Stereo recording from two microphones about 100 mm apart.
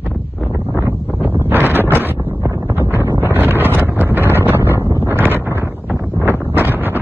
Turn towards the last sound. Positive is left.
turn(degrees=-20)  # may be behind; listen again after turning